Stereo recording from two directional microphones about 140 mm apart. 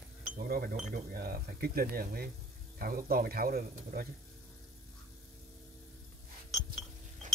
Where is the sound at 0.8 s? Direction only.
90° right.